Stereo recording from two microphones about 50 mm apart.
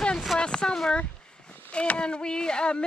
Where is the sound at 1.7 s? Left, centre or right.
Left.